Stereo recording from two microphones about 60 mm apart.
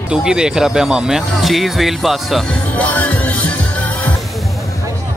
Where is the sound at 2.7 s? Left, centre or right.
Left.